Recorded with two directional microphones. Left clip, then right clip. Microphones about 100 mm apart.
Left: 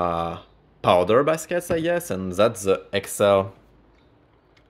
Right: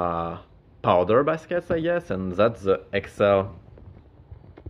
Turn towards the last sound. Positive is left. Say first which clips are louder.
# left 2 dB
turn(degrees=40)  # may be behind; listen again after turning